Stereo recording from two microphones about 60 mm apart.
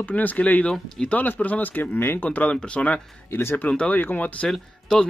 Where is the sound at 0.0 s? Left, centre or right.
Left.